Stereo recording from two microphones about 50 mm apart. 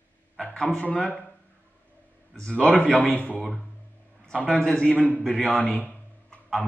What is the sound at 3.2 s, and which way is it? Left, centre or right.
A man's voice, left.